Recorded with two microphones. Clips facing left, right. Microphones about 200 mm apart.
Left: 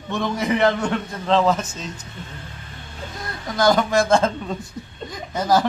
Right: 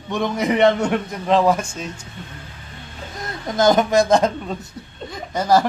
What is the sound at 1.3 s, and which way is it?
Speech, 10° right (ahead or behind).